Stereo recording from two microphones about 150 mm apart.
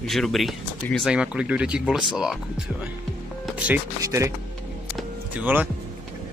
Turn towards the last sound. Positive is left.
turn(degrees=-10)  # may be behind; listen again after turning